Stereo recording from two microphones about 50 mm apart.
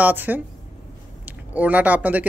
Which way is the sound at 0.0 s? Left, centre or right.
Right.